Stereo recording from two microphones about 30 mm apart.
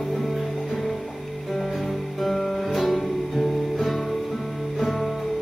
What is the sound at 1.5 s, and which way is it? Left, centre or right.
Music, centre.